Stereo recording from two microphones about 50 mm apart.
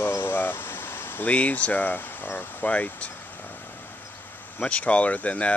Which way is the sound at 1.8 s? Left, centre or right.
Left.